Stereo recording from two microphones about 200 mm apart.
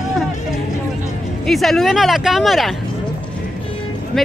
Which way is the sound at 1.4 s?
Centre (ahead or behind).